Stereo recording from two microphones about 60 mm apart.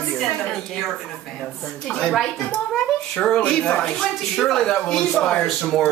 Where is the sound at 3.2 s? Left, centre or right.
Centre.